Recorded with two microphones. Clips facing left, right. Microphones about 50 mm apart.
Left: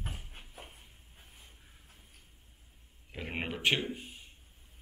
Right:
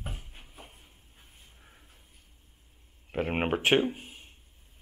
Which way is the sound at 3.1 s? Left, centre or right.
Right.